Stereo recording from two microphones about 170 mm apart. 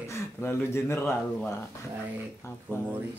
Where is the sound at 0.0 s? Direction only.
15° left (ahead or behind).